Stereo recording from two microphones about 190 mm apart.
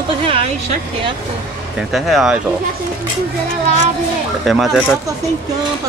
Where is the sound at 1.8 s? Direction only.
Centre (ahead or behind).